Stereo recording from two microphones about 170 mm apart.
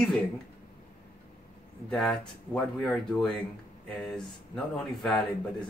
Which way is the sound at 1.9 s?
5° left (ahead or behind).